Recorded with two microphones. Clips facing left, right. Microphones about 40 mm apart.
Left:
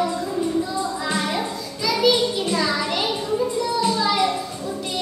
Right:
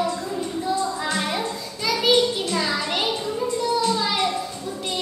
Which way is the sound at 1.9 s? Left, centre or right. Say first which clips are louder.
Left 2 dB; right.